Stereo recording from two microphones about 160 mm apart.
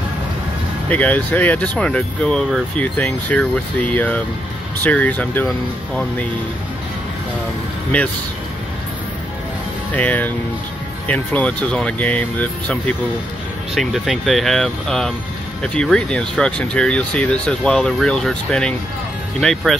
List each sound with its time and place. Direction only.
0.8 s speech: 10° left (ahead or behind)
9.9 s speech: 10° left (ahead or behind)
13.7 s speech: centre (ahead or behind)